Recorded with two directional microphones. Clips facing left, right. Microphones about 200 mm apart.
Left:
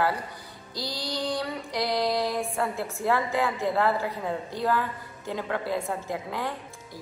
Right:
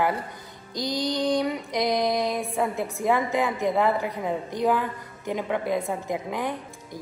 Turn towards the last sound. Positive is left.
turn(degrees=-15)  # may be behind; listen again after turning